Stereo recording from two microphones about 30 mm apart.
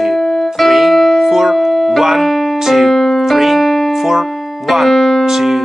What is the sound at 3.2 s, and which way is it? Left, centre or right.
Piano, centre.